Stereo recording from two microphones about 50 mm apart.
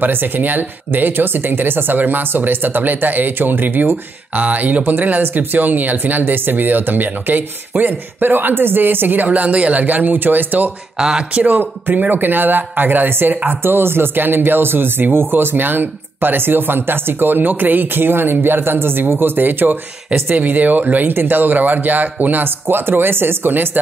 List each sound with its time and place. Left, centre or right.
0.0 s speech: right
4.4 s speech: right
11.0 s speech: centre
11.4 s speech: right